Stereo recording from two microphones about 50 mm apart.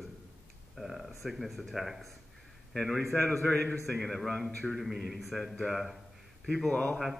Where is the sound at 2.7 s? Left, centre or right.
Centre.